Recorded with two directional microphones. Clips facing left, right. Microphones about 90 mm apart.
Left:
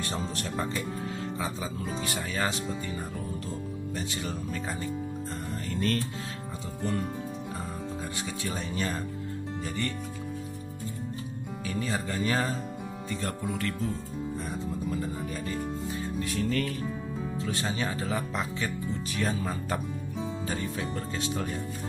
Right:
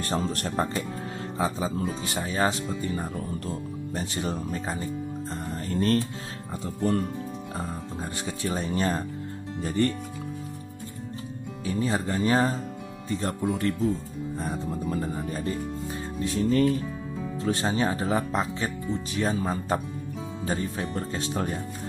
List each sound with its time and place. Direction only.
0.0 s speech: 50° right (ahead or behind)
6.8 s speech: 45° right (ahead or behind)
8.0 s speech: 35° right (ahead or behind)
11.6 s speech: 30° right (ahead or behind)
14.4 s speech: 40° right (ahead or behind)
16.2 s speech: 30° right (ahead or behind)